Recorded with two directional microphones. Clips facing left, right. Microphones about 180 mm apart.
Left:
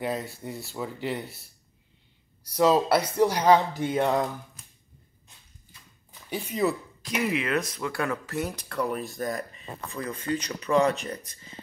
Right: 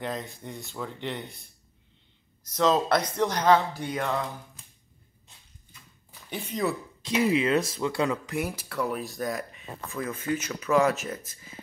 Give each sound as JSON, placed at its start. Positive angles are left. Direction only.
{"t": 0.0, "sound": "speech", "side_deg": 10}
{"t": 6.3, "sound": "speech", "side_deg": 0}
{"t": 7.0, "sound": "speech", "side_deg": -25}